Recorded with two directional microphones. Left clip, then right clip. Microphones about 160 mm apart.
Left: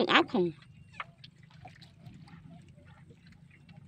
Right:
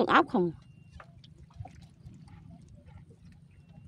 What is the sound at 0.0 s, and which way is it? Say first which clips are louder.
Speech: right 2 dB; 20° right (ahead or behind).